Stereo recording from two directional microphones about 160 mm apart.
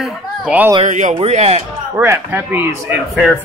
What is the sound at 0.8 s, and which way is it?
Speech, 45° right (ahead or behind).